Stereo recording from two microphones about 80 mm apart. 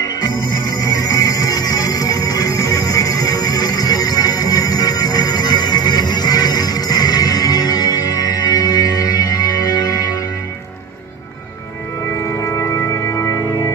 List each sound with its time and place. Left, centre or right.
0.0 s music: left
12.3 s music: left